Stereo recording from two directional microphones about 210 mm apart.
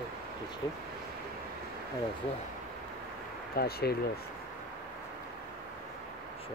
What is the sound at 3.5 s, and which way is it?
Speech, 45° left (ahead or behind).